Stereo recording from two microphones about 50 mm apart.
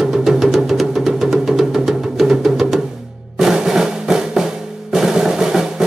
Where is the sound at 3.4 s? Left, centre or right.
Centre.